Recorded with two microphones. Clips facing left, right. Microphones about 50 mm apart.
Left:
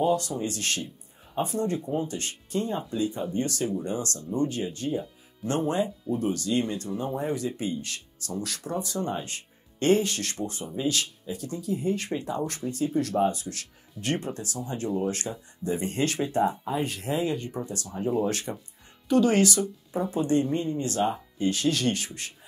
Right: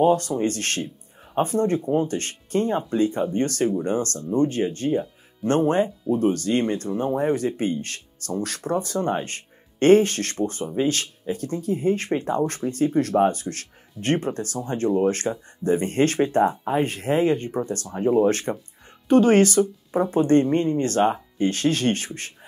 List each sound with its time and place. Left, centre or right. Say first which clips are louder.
0.0 s speech: right 6 dB; right
20.1 s speech: right 6 dB; right